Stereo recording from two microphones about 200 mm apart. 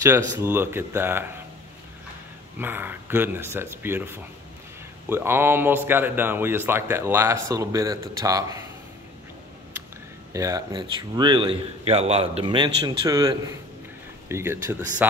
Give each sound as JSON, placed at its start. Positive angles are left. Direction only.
{"t": 0.4, "sound": "speech", "side_deg": -10}
{"t": 2.6, "sound": "speech", "side_deg": -10}
{"t": 10.3, "sound": "a man's voice", "side_deg": -15}